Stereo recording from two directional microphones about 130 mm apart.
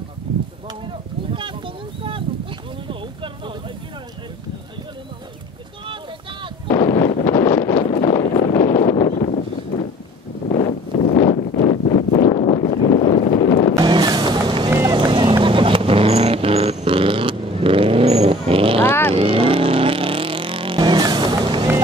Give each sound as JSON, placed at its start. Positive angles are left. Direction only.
{"t": 2.3, "sound": "a sound", "side_deg": -40}
{"t": 6.9, "sound": "wind noise", "side_deg": 45}
{"t": 10.5, "sound": "wind", "side_deg": 45}
{"t": 11.5, "sound": "a sound", "side_deg": 60}
{"t": 12.6, "sound": "boat", "side_deg": 60}
{"t": 13.8, "sound": "vehicle", "side_deg": -30}
{"t": 14.7, "sound": "boat", "side_deg": -30}
{"t": 18.8, "sound": "vehicle", "side_deg": 15}
{"t": 19.1, "sound": "vehicle", "side_deg": -45}